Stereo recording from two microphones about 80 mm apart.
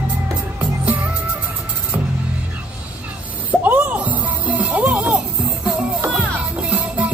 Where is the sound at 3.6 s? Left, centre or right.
Centre.